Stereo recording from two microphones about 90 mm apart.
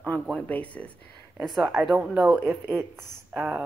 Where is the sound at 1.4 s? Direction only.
Centre (ahead or behind).